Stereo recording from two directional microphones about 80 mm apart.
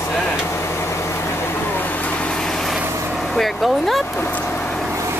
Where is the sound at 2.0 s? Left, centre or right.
Centre.